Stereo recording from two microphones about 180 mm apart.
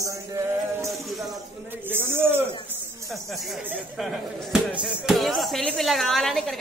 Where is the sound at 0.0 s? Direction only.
15° right (ahead or behind).